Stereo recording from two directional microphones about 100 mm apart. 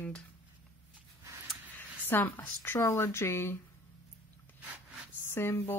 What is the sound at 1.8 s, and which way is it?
A woman's voice, 20° left (ahead or behind).